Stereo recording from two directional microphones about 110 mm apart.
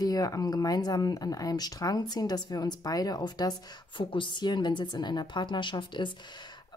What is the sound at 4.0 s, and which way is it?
Speech, 50° left (ahead or behind).